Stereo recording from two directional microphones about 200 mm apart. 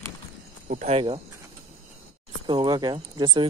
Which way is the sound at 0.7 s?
35° right (ahead or behind).